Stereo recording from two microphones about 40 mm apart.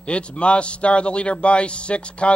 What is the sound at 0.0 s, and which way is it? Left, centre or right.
Speech, left.